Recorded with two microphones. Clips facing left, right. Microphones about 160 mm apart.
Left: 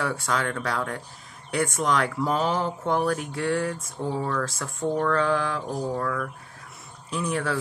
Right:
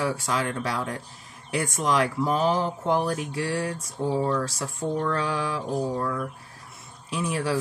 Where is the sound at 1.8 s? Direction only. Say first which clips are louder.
Right 4 dB; centre (ahead or behind).